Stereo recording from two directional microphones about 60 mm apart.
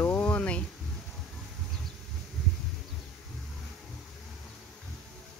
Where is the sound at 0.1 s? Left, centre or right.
Left.